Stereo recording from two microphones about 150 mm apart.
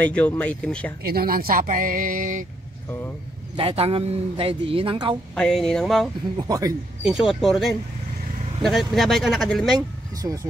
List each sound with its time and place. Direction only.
0.0 s speech: 10° left (ahead or behind)
1.0 s speech: 90° right; by 2.4 s 65° right (ahead or behind)
3.5 s speech: 40° right (ahead or behind)
5.3 s speech: 5° left (ahead or behind)
6.3 s speech: 25° right (ahead or behind)
7.0 s speech: 5° right (ahead or behind)
9.8 s speech: 25° right (ahead or behind)